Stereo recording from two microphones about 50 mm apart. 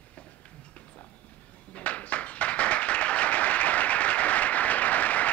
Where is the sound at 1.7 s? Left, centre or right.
Left.